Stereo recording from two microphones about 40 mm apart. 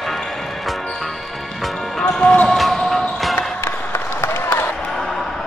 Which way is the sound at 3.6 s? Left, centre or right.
Left.